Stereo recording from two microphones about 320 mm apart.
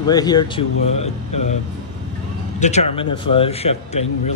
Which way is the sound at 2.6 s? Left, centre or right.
Left.